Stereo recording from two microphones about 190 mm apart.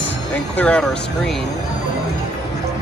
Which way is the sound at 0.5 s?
5° left (ahead or behind).